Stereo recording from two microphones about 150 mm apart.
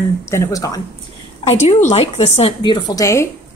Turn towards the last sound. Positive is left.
turn(degrees=20)  # may be behind; listen again after turning